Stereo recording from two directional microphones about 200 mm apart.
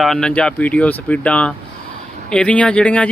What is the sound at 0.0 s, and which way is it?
Speech, 5° left (ahead or behind).